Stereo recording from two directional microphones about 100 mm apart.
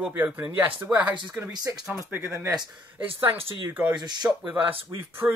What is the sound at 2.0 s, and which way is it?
Speech, 25° right (ahead or behind).